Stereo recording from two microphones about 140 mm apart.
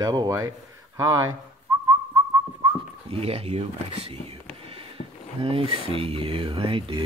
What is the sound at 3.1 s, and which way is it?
Speech, 45° right (ahead or behind).